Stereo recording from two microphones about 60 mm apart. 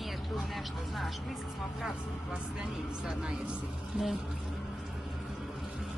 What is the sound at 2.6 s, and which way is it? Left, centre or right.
Speech, centre.